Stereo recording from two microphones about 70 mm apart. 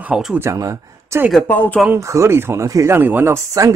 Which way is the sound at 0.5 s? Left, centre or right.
Right.